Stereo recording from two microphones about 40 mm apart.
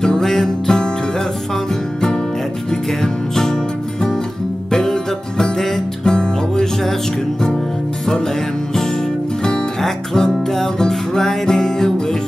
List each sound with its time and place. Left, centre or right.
0.0 s music: centre
3.0 s music: centre
4.6 s music: centre
6.0 s music: centre
9.4 s music: centre